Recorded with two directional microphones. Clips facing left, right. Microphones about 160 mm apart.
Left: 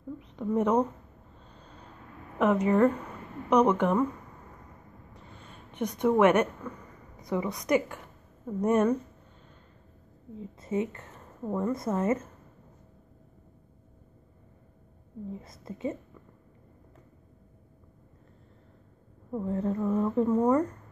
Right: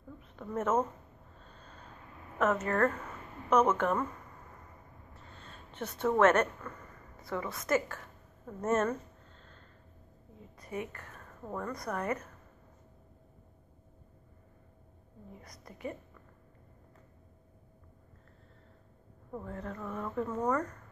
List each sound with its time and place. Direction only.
0.2 s speech: 15° left (ahead or behind)
2.3 s speech: 15° left (ahead or behind)
5.1 s a sound: 15° left (ahead or behind)
8.5 s speech: 15° left (ahead or behind)
10.6 s a woman's voice: 25° left (ahead or behind)
15.4 s a woman's voice: 25° left (ahead or behind)
19.4 s a woman's voice: 25° left (ahead or behind)